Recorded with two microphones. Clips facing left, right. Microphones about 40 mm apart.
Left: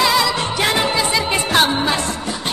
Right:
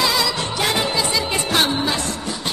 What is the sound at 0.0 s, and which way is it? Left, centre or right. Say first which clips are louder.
Music: left 4 dB; centre.